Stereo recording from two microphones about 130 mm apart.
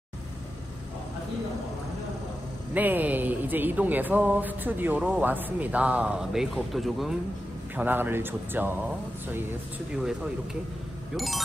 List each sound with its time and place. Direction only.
2.7 s speech: 15° right (ahead or behind)
7.7 s speech: 15° right (ahead or behind)
9.9 s speech: 5° right (ahead or behind)